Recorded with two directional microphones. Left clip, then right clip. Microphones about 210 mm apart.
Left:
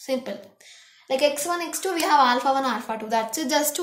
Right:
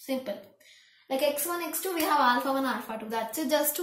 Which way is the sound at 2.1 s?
50° left (ahead or behind).